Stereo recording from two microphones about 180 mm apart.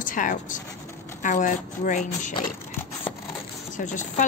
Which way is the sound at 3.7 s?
45° left (ahead or behind).